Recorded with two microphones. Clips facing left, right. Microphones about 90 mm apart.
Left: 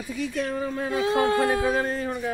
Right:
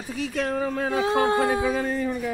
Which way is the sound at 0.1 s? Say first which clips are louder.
Right 2 dB; 90° right.